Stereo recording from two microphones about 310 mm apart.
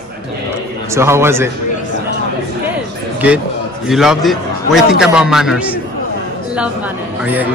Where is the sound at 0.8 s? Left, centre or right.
Centre.